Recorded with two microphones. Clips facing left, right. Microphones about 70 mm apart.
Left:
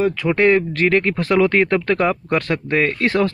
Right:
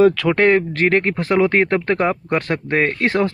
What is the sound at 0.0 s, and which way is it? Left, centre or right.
Speech, right.